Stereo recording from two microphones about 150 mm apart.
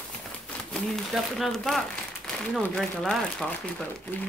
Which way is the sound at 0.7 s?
Centre (ahead or behind).